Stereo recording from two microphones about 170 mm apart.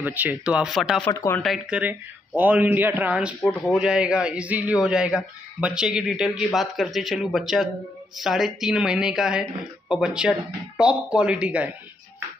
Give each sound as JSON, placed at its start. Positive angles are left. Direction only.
{"t": 0.0, "sound": "speech", "side_deg": -10}
{"t": 1.1, "sound": "speech", "side_deg": 15}
{"t": 1.4, "sound": "speech", "side_deg": -5}